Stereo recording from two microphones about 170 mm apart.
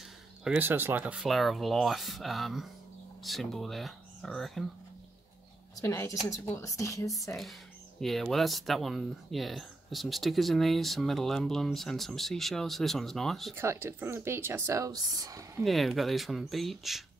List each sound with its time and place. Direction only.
0.4 s speech: 10° right (ahead or behind)
5.8 s a woman's voice: 15° left (ahead or behind)
8.0 s speech: centre (ahead or behind)
13.6 s speech: 15° right (ahead or behind)
15.6 s speech: centre (ahead or behind)